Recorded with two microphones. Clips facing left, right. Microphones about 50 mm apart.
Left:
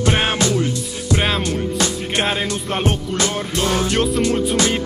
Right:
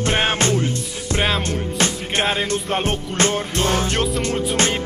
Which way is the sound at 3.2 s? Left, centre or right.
Right.